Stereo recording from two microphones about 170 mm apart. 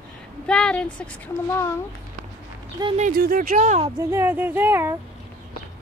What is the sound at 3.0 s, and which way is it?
Speech, 60° right (ahead or behind).